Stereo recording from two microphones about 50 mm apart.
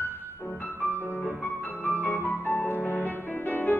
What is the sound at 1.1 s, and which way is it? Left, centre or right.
Music, left.